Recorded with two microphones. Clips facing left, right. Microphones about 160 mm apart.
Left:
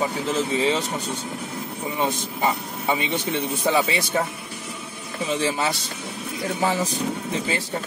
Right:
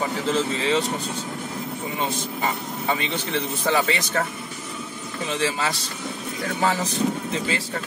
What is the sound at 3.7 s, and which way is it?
Speech, 15° left (ahead or behind).